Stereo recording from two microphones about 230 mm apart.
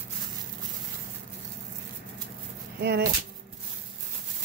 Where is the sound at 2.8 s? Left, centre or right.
Right.